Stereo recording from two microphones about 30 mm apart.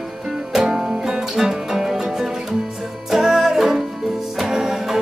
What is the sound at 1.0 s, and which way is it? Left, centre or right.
Music, centre.